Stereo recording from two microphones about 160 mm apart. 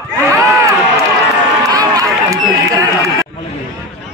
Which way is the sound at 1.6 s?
20° right (ahead or behind).